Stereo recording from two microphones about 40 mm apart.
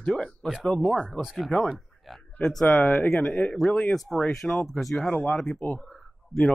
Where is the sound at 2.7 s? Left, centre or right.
Left.